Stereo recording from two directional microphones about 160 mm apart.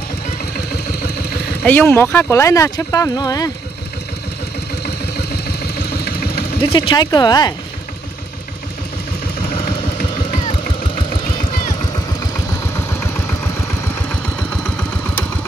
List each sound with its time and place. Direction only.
1.7 s speech: 10° left (ahead or behind)
4.8 s vehicle: 80° left
6.7 s speech: 30° left (ahead or behind)
10.3 s vehicle: 30° left (ahead or behind)
12.4 s vehicle: 15° left (ahead or behind)
14.6 s engine: 10° left (ahead or behind)